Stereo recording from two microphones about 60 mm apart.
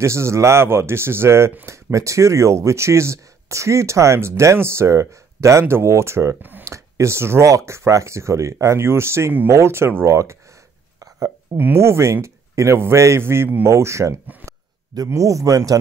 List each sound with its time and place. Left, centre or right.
0.0 s speech: right
1.7 s speech: right
7.4 s speech: right
11.0 s a sound: right
11.5 s speech: right